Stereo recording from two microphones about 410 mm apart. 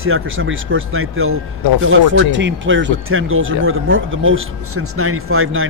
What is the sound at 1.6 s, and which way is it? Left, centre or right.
Speech, left.